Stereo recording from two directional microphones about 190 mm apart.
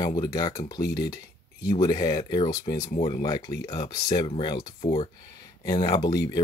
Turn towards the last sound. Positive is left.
turn(degrees=20)  # may be behind; listen again after turning